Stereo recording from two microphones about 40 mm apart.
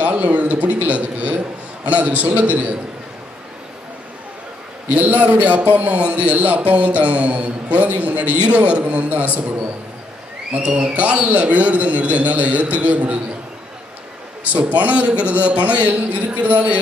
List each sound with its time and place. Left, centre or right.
0.0 s a man's voice: right
4.8 s a man's voice: right
10.5 s a man's voice: right
11.0 s a man's voice: right
14.7 s a man's voice: right